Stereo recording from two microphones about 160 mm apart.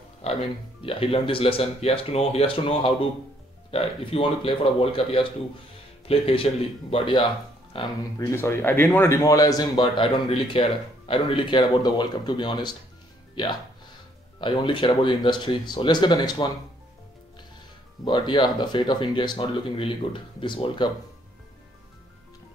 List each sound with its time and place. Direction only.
0.2 s music: 40° left (ahead or behind)
0.8 s speech: 35° left (ahead or behind)
3.7 s speech: 35° left (ahead or behind)
8.3 s speech: 15° left (ahead or behind)
14.4 s speech: 30° left (ahead or behind)
18.0 s speech: 30° left (ahead or behind)